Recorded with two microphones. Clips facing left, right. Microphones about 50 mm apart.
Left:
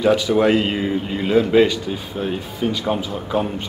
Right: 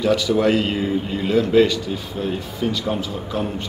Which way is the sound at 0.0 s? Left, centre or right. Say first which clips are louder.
Left 2 dB; centre.